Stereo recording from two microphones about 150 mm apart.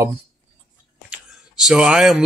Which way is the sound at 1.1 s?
5° right (ahead or behind).